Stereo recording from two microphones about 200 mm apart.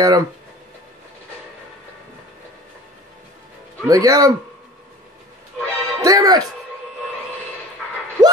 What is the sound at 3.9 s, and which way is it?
Speech, 15° right (ahead or behind).